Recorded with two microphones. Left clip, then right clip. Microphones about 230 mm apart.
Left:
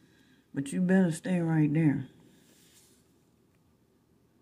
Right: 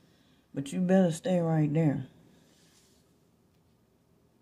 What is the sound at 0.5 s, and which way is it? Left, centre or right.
Speech, centre.